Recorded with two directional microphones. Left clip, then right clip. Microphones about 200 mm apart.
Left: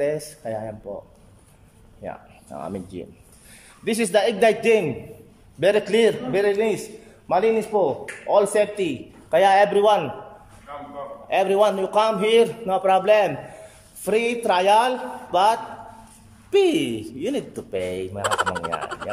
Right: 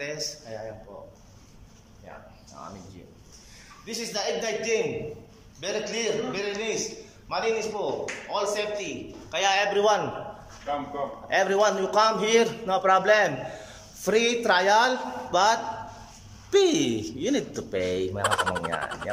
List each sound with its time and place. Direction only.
0.0 s a man's voice: 35° left (ahead or behind)
2.0 s a man's voice: 50° left (ahead or behind)
5.6 s a man's voice: 45° left (ahead or behind)
9.8 s a man's voice: 15° left (ahead or behind)
11.2 s a man's voice: 15° left (ahead or behind)